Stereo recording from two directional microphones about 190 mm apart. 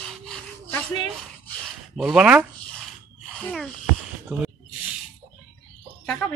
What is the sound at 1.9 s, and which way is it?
Speech, centre (ahead or behind).